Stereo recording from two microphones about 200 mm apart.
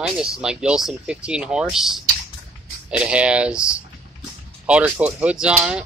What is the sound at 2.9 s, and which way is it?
Speech, 5° right (ahead or behind).